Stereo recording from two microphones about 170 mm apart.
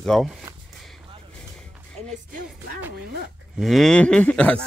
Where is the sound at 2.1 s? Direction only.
50° right (ahead or behind).